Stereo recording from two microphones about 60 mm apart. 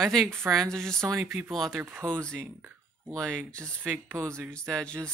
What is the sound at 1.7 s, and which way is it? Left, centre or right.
Speech, right.